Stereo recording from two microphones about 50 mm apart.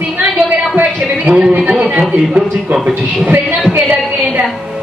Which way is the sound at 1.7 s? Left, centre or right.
Right.